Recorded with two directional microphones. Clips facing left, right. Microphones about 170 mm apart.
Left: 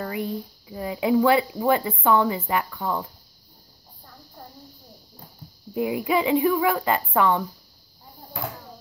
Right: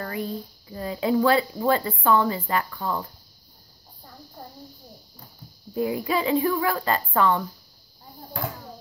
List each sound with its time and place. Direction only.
0.0 s speech: 15° left (ahead or behind)
5.8 s speech: 15° left (ahead or behind)